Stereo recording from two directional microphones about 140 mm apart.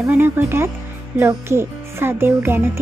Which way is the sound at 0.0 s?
15° right (ahead or behind).